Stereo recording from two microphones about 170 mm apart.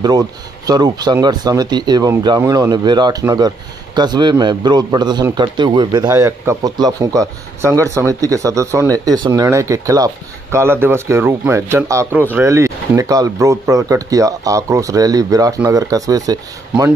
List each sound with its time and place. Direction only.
0.7 s speech: 25° right (ahead or behind)